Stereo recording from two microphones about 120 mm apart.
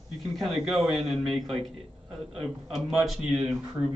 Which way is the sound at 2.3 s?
55° right (ahead or behind).